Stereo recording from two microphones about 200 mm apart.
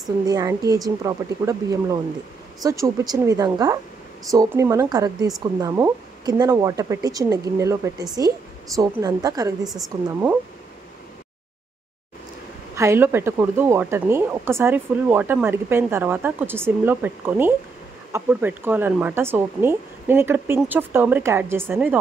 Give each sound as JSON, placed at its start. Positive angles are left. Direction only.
{"t": 0.3, "sound": "speech", "side_deg": -15}
{"t": 9.6, "sound": "a woman's voice", "side_deg": 0}
{"t": 12.7, "sound": "speech", "side_deg": -15}